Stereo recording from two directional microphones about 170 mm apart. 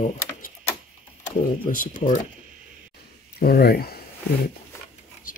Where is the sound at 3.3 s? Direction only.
65° left (ahead or behind).